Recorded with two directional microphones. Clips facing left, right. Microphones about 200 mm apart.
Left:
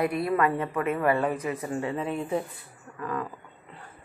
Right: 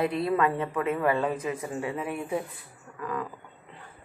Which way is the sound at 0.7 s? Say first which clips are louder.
Left 1 dB; 15° right (ahead or behind).